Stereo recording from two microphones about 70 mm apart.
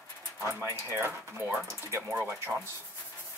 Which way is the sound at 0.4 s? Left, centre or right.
Right.